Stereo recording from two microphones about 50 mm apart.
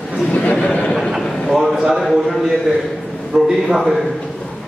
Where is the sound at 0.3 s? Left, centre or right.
Left.